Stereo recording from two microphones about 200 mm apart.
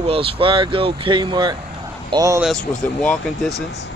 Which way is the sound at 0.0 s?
30° right (ahead or behind).